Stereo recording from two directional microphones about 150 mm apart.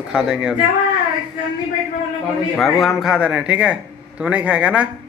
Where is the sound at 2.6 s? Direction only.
Centre (ahead or behind).